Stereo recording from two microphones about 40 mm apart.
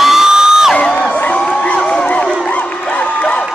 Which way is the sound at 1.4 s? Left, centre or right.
Left.